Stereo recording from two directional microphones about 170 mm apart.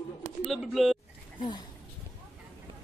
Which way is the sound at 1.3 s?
30° left (ahead or behind).